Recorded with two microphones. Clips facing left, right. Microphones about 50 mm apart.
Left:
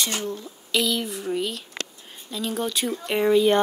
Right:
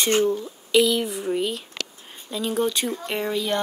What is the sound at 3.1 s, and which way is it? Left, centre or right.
Speech, centre.